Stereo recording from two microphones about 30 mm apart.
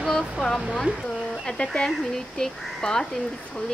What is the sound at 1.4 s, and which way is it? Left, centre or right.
Speech, left.